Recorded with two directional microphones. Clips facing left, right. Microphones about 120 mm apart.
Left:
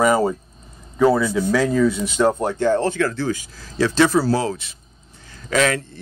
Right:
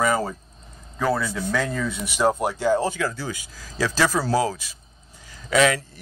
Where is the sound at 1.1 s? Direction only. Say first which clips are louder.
Left 6 dB; 5° left (ahead or behind).